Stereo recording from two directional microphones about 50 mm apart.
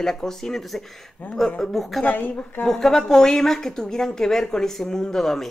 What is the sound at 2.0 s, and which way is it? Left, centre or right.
Speech, left.